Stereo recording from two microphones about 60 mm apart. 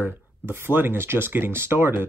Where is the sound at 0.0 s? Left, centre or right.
Right.